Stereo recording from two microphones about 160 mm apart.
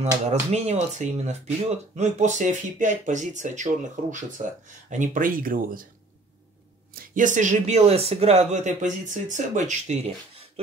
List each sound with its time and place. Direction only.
0.2 s speech: 45° right (ahead or behind); by 5.9 s 60° right (ahead or behind)
6.9 s speech: 60° right (ahead or behind); by 10.6 s 40° right (ahead or behind)